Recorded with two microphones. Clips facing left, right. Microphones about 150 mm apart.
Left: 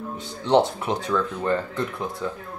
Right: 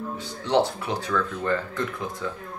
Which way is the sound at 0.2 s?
25° left (ahead or behind).